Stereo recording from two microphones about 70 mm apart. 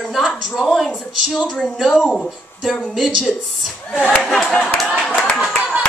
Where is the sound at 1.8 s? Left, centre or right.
Centre.